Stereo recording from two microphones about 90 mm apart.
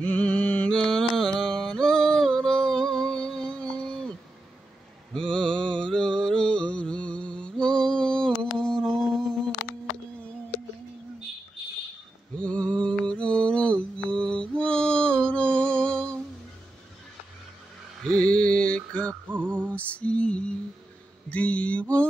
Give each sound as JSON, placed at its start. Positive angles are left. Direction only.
{"t": 0.0, "sound": "music", "side_deg": 15}
{"t": 5.1, "sound": "mantra", "side_deg": 10}
{"t": 12.4, "sound": "mantra", "side_deg": 10}
{"t": 18.1, "sound": "mantra", "side_deg": 10}
{"t": 19.2, "sound": "music", "side_deg": -20}
{"t": 19.7, "sound": "lullaby", "side_deg": 15}
{"t": 21.3, "sound": "mantra", "side_deg": 15}